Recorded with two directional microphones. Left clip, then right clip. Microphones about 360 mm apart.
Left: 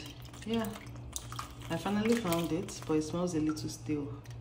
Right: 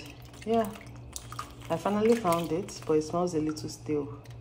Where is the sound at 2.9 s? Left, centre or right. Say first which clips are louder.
Right 6 dB; right.